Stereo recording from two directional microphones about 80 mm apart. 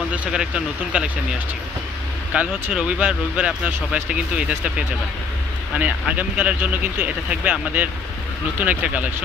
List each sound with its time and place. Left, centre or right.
0.1 s speech: centre
2.3 s speech: centre
8.5 s speech: centre